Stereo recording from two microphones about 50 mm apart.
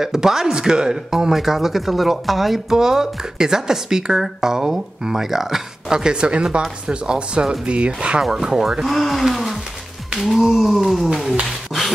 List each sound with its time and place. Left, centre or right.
0.0 s speech: centre
8.2 s speech: centre